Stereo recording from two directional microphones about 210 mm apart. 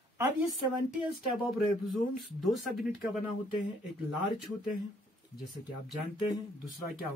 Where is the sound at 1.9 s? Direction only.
Centre (ahead or behind).